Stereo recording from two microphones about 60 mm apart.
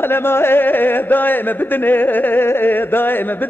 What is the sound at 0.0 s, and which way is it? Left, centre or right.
A man's voice, left.